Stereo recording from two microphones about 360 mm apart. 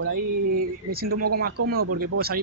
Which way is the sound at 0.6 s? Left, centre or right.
Right.